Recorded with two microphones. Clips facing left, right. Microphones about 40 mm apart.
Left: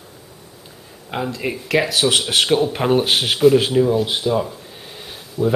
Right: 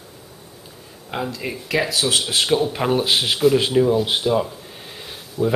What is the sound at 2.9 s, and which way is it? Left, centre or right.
Speech, centre.